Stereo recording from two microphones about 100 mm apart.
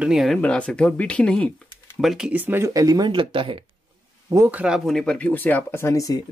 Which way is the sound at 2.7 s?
40° right (ahead or behind).